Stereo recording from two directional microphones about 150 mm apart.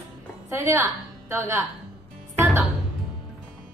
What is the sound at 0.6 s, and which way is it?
Speech, 20° right (ahead or behind).